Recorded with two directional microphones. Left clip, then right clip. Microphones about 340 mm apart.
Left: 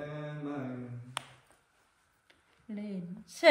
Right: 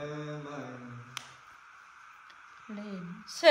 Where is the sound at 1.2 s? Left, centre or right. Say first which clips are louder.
Left 3 dB; centre.